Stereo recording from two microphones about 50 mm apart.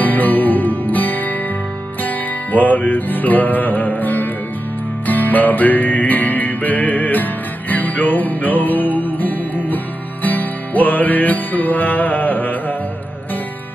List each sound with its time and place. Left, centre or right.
0.0 s music: left